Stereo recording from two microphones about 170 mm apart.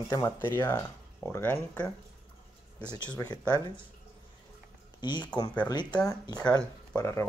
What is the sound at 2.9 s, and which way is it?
Speech, 25° left (ahead or behind).